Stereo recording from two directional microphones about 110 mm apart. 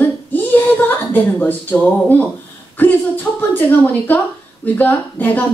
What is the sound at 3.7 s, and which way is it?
A woman's voice, 15° left (ahead or behind).